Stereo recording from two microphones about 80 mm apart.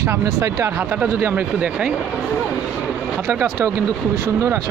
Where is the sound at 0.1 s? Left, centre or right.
Right.